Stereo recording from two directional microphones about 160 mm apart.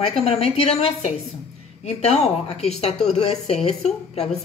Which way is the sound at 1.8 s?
40° left (ahead or behind).